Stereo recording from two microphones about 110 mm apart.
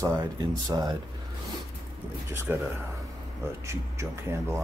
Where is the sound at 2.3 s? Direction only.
20° right (ahead or behind).